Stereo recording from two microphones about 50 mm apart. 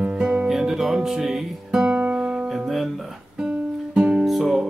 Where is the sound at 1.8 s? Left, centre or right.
Centre.